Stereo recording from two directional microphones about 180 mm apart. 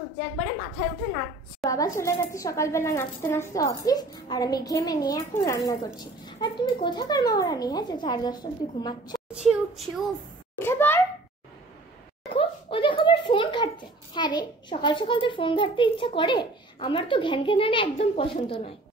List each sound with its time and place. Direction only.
1.6 s a child's voice: 20° left (ahead or behind)
9.3 s speech: 5° right (ahead or behind)
10.6 s a child's voice: 10° left (ahead or behind)
12.3 s a sound: 30° left (ahead or behind)
14.1 s a child's voice: 25° left (ahead or behind)